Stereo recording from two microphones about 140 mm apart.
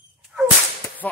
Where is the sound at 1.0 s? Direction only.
10° left (ahead or behind).